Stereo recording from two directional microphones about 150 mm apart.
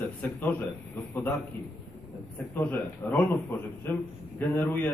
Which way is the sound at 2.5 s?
15° left (ahead or behind).